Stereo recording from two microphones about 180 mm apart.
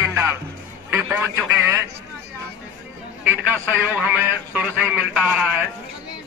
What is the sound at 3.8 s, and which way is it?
Speech, 10° right (ahead or behind).